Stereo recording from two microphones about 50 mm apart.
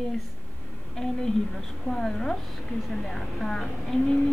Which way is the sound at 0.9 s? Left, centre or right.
Centre.